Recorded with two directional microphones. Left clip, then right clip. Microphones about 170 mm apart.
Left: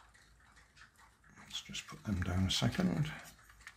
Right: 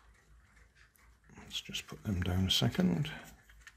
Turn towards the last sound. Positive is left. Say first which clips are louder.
# right 2 dB
turn(degrees=-35)  # may be behind; listen again after turning